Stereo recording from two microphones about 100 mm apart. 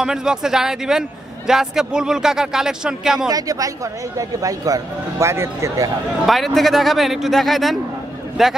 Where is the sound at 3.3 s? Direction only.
35° right (ahead or behind).